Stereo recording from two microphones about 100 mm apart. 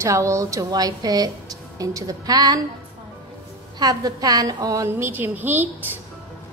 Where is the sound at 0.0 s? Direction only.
30° right (ahead or behind).